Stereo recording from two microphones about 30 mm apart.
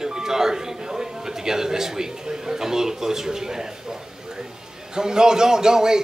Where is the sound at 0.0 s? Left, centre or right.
Centre.